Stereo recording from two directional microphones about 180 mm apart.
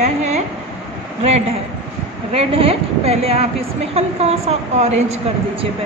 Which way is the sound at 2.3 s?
30° right (ahead or behind).